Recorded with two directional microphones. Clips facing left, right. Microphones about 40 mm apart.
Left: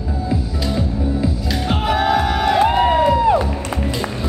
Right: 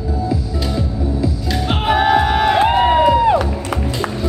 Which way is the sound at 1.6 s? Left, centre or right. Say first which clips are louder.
Right 3 dB; right.